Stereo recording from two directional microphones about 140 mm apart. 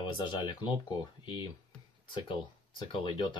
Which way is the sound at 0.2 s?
35° left (ahead or behind).